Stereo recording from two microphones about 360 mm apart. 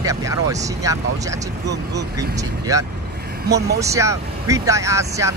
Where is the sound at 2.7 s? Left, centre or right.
Centre.